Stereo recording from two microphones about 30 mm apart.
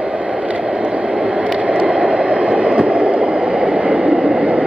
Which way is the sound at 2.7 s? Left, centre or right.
Right.